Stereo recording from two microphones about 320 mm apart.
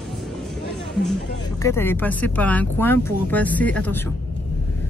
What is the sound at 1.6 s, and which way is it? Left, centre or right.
Speech, centre.